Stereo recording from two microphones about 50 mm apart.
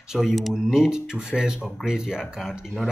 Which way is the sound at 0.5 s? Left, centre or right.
Centre.